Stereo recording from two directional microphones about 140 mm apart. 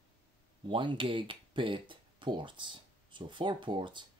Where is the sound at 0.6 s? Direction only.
35° right (ahead or behind).